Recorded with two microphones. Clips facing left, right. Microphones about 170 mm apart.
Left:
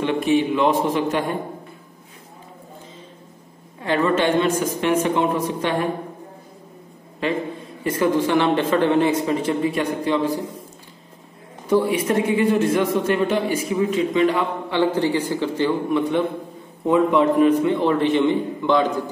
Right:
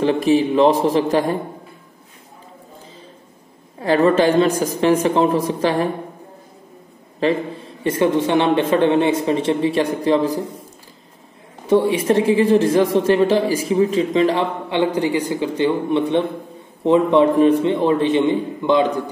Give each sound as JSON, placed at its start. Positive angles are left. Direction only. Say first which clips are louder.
{"t": 0.0, "sound": "a man's voice", "louder": "right 3 dB", "side_deg": -35}
{"t": 3.8, "sound": "a man's voice", "louder": "right 5 dB", "side_deg": -35}
{"t": 7.8, "sound": "a man's voice", "louder": "right 2 dB", "side_deg": -25}
{"t": 11.6, "sound": "a man's voice", "louder": "right 3 dB", "side_deg": -25}
{"t": 14.7, "sound": "a man's voice", "louder": "even", "side_deg": -15}